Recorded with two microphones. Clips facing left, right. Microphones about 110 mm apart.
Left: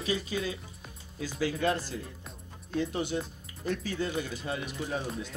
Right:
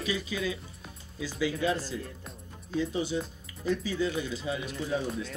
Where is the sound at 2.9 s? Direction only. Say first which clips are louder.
Right 1 dB; 55° left (ahead or behind).